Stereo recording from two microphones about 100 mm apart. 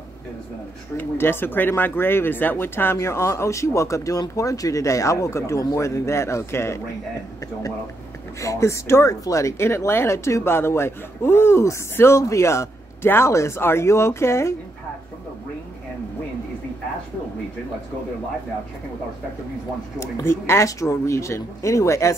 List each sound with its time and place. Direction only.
0.9 s speech: 25° left (ahead or behind)
8.4 s speech: 30° left (ahead or behind)
20.0 s speech: 25° left (ahead or behind)